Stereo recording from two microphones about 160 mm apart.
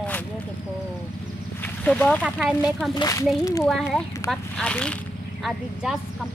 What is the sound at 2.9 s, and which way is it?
Speech, 25° left (ahead or behind).